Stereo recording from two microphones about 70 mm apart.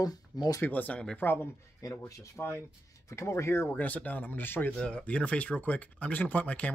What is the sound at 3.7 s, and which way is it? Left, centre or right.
Speech, left.